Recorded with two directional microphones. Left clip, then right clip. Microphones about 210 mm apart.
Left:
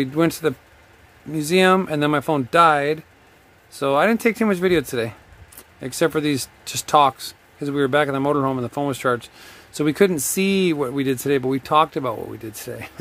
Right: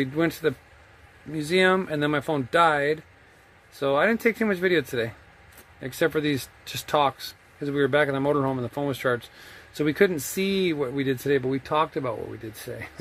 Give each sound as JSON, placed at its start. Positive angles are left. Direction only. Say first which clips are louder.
{"t": 0.0, "sound": "speech", "louder": "left 4 dB", "side_deg": 15}